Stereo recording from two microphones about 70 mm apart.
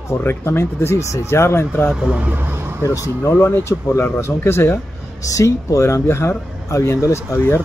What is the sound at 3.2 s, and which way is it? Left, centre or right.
Speech, left.